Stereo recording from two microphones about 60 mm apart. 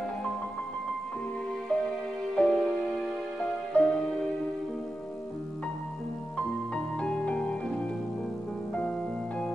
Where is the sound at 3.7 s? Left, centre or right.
Left.